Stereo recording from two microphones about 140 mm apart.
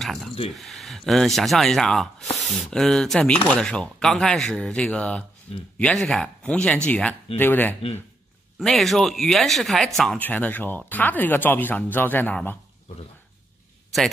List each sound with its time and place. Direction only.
0.0 s a sound: centre (ahead or behind)
0.5 s speech: centre (ahead or behind)
8.5 s speech: centre (ahead or behind)